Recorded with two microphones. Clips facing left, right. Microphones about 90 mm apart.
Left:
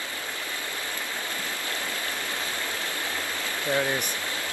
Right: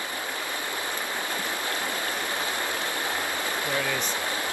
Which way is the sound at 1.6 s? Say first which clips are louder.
Right 3 dB; 20° right (ahead or behind).